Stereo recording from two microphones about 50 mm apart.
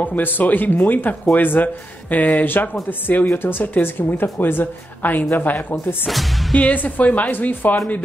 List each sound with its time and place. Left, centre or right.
0.0 s speech: left
6.0 s speech: centre
6.5 s speech: left